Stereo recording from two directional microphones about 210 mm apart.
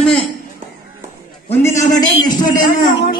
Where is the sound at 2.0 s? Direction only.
20° left (ahead or behind).